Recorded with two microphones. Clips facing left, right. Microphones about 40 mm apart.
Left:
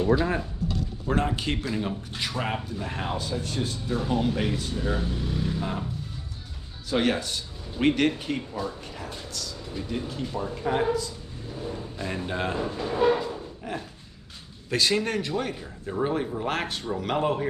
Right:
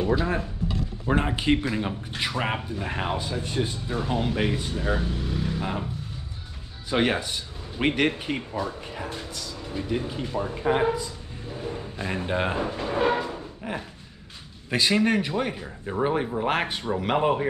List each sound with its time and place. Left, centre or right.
0.1 s speech: centre
1.0 s speech: centre
5.6 s speech: centre
6.9 s speech: centre